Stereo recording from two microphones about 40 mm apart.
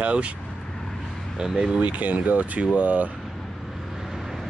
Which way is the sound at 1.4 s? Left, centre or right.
Centre.